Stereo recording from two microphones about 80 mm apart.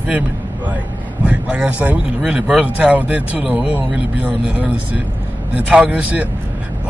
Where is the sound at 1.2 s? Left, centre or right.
Centre.